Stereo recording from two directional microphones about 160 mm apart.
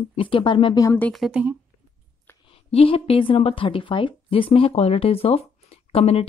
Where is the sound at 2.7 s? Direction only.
35° left (ahead or behind).